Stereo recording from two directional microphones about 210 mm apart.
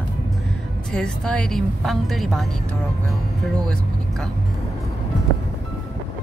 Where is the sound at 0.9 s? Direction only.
5° left (ahead or behind).